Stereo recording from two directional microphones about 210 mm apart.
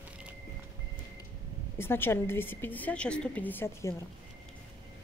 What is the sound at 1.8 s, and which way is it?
Speech, 10° left (ahead or behind).